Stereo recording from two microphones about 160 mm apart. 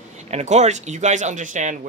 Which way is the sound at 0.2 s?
45° right (ahead or behind).